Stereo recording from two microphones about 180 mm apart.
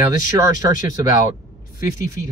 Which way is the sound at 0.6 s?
20° right (ahead or behind).